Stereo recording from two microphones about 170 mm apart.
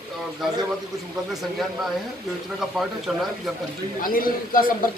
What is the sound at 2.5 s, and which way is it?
Speech, centre (ahead or behind).